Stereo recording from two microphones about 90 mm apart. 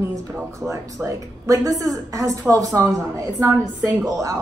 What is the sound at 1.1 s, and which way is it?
Speech, 40° right (ahead or behind).